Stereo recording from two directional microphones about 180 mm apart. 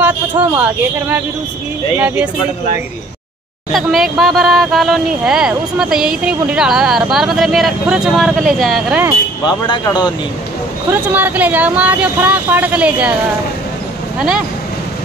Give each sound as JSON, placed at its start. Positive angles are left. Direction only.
{"t": 0.0, "sound": "speech", "side_deg": -10}
{"t": 3.7, "sound": "speech", "side_deg": 0}
{"t": 9.6, "sound": "speech", "side_deg": 20}
{"t": 10.9, "sound": "speech", "side_deg": -10}